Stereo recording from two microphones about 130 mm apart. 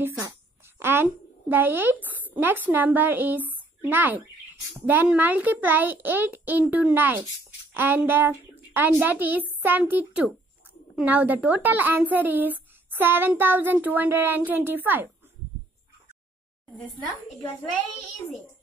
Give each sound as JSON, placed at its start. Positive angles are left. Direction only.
{"t": 0.7, "sound": "a woman's voice", "side_deg": -20}
{"t": 18.1, "sound": "a child's voice", "side_deg": 20}